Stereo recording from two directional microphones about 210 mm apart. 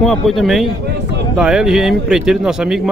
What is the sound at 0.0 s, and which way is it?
Speech, centre (ahead or behind).